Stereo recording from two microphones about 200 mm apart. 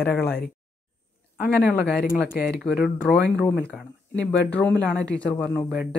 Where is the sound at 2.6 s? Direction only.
Centre (ahead or behind).